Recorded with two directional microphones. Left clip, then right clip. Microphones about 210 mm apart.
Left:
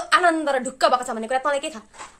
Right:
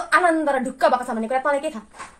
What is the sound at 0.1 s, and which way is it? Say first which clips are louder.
A woman's voice: even; 30° left (ahead or behind).